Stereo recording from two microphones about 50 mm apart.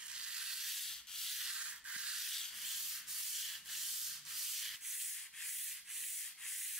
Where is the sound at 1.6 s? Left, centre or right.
Centre.